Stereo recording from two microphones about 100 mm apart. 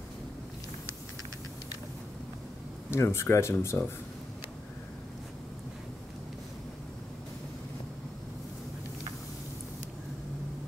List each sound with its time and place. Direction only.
2.9 s speech: 25° left (ahead or behind)